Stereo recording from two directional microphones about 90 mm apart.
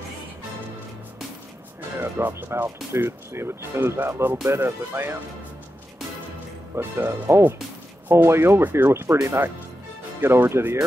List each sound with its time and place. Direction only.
2.0 s speech: 25° right (ahead or behind)
6.7 s speech: 25° right (ahead or behind)